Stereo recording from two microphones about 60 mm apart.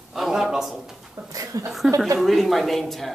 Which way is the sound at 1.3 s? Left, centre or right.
Right.